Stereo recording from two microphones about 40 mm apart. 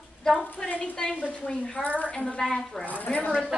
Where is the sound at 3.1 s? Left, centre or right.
Left.